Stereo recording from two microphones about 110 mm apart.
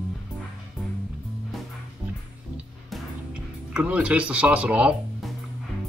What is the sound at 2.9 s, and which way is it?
Music, 10° right (ahead or behind).